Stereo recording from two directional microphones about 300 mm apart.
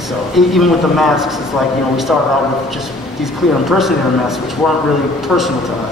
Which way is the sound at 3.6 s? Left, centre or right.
Centre.